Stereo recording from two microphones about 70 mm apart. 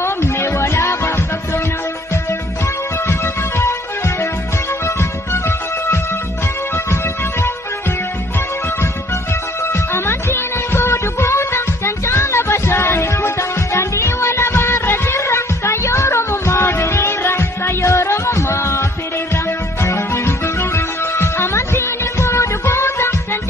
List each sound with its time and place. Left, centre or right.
0.0 s music: left
3.1 s music: left
9.9 s music: left